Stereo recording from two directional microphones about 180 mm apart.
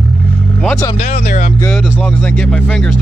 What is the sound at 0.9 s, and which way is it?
Speech, 45° left (ahead or behind).